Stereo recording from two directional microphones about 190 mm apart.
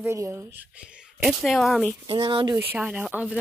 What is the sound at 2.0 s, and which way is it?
Speech, 25° right (ahead or behind).